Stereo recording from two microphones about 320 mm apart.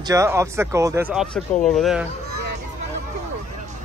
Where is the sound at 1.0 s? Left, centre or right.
Centre.